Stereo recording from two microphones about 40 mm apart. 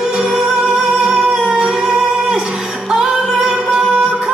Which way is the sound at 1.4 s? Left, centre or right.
Right.